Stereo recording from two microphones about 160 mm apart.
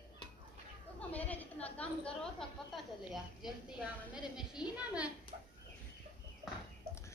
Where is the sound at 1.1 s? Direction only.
10° left (ahead or behind); by 5.1 s 5° right (ahead or behind).